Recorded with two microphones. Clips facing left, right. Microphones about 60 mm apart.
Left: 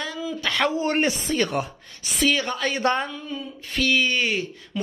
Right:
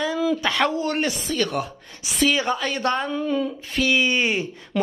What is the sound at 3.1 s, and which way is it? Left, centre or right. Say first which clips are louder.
Speech: right 10 dB; right.